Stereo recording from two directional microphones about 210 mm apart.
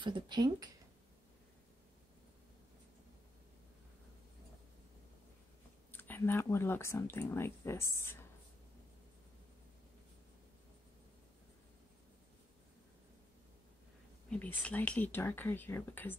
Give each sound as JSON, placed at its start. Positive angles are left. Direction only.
{"t": 0.0, "sound": "speech", "side_deg": -20}
{"t": 5.9, "sound": "speech", "side_deg": 10}
{"t": 14.3, "sound": "speech", "side_deg": 5}